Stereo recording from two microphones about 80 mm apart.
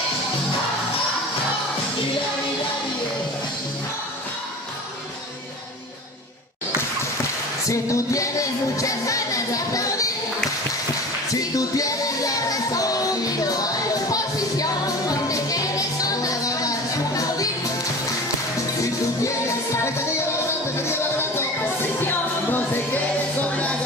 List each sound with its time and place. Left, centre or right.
7.7 s music: left
11.5 s music: left
19.2 s music: left